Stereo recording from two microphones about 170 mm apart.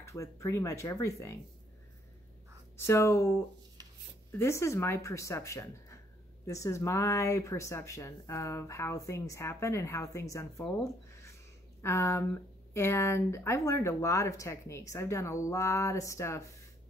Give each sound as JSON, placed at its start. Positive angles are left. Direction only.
{"t": 0.0, "sound": "speech", "side_deg": 15}
{"t": 2.8, "sound": "speech", "side_deg": 15}
{"t": 10.8, "sound": "a sound", "side_deg": 15}
{"t": 11.8, "sound": "speech", "side_deg": 15}